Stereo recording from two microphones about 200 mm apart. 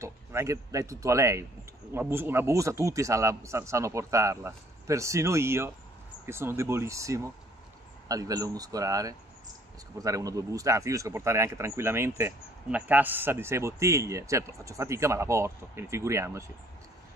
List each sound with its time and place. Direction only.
0.0 s speech: 15° right (ahead or behind)